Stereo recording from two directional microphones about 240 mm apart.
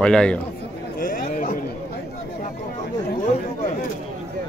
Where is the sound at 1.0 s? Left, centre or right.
Left.